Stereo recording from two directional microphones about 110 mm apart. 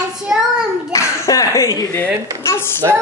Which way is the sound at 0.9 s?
30° left (ahead or behind).